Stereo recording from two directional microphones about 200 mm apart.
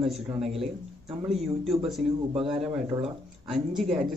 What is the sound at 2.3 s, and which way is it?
Speech, 30° right (ahead or behind).